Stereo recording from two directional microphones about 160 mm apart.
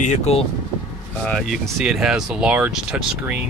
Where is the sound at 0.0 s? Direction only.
45° left (ahead or behind).